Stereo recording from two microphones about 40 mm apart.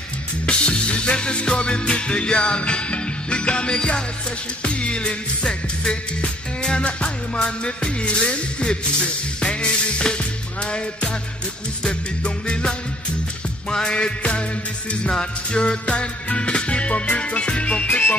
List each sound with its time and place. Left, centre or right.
0.5 s music: left
17.8 s music: left